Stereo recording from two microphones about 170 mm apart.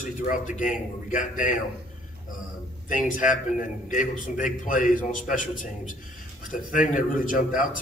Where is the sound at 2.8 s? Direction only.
50° left (ahead or behind).